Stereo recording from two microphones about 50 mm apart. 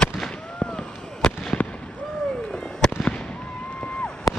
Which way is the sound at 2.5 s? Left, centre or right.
Centre.